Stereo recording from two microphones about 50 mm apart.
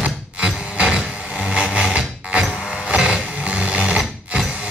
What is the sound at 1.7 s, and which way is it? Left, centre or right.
Music, centre.